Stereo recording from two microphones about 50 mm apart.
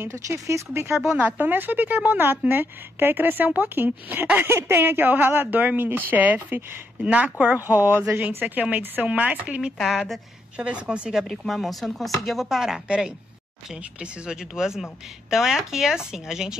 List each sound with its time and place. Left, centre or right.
0.1 s speech: right
1.4 s a woman's voice: right
4.4 s a woman's voice: right
7.6 s a woman's voice: right
9.8 s speech: centre
10.6 s a woman's voice: right
11.2 s speech: centre
12.8 s a woman's voice: centre
14.2 s speech: centre